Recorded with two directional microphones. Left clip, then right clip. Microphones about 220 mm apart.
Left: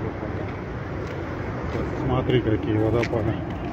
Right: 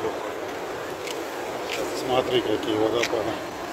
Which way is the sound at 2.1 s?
35° right (ahead or behind).